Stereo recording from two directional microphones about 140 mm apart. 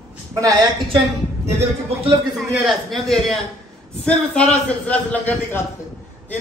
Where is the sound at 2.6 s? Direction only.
Centre (ahead or behind).